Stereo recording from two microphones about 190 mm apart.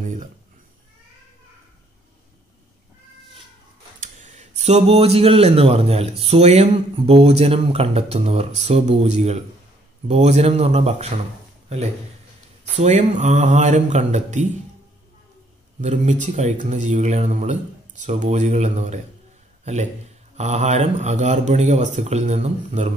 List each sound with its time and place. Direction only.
4.0 s speech: 40° right (ahead or behind)
12.7 s speech: 35° right (ahead or behind)
15.8 s a man's voice: 40° right (ahead or behind)